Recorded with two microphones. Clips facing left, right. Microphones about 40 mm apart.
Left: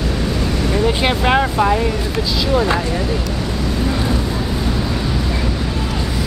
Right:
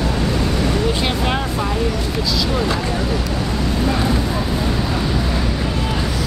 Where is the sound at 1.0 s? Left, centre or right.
Left.